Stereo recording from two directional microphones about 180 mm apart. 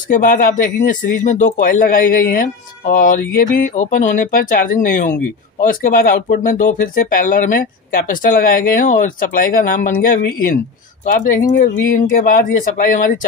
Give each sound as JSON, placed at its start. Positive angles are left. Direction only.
{"t": 0.1, "sound": "speech", "side_deg": 50}